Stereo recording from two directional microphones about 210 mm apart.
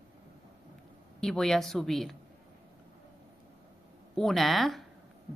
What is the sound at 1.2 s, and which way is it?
Speech, centre (ahead or behind).